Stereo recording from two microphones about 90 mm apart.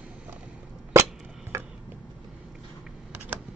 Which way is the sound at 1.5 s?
35° right (ahead or behind).